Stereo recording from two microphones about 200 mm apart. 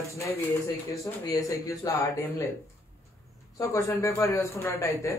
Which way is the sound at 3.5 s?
15° left (ahead or behind).